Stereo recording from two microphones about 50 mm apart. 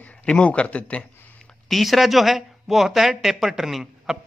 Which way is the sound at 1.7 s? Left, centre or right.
Centre.